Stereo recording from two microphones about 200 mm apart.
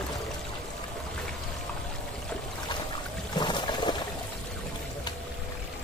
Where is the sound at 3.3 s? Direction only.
20° left (ahead or behind).